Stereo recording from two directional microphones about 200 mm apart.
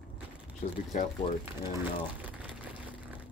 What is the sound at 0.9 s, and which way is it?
Speech, 40° left (ahead or behind).